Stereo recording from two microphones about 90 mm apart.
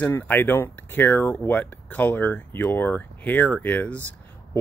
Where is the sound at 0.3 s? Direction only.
25° left (ahead or behind).